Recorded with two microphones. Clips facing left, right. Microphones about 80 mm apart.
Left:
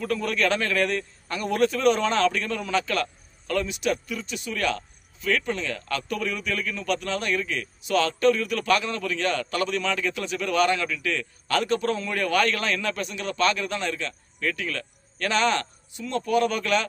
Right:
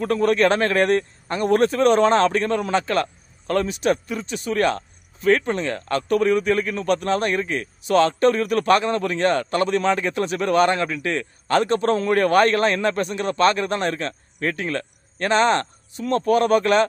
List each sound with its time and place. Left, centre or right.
0.0 s a man's voice: right